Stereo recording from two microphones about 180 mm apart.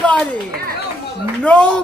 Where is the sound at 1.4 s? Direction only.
5° left (ahead or behind).